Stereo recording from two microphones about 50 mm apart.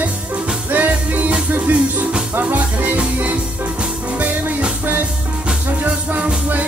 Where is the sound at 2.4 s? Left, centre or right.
Right.